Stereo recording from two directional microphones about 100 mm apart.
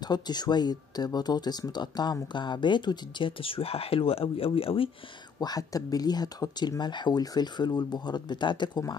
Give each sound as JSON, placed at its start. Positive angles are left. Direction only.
{"t": 0.0, "sound": "speech", "side_deg": 45}
{"t": 5.4, "sound": "speech", "side_deg": 40}